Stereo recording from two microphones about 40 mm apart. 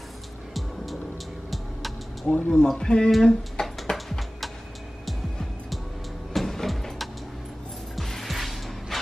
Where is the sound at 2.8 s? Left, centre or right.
Centre.